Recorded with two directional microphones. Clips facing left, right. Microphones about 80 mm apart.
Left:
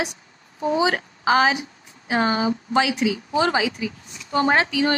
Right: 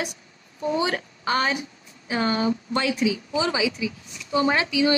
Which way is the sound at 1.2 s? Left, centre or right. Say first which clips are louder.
Left 6 dB; left.